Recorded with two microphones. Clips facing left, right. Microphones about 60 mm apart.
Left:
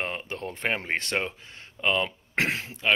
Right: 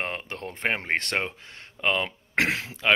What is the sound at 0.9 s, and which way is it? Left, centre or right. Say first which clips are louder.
Speech: right 1 dB; right.